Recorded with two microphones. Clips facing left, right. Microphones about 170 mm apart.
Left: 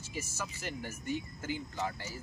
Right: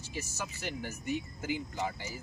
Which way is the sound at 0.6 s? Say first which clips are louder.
Right 2 dB; centre (ahead or behind).